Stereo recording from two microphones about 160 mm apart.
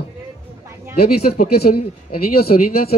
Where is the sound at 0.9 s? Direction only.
75° left (ahead or behind).